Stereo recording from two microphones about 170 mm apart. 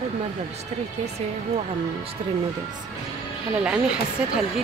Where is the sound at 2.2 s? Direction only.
35° right (ahead or behind).